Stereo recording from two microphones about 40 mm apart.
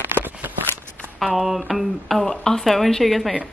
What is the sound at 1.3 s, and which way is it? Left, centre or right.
Speech, centre.